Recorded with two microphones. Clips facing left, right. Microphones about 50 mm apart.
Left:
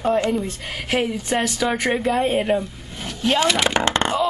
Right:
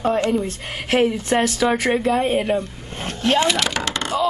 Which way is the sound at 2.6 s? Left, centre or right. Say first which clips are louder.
Right 2 dB; right.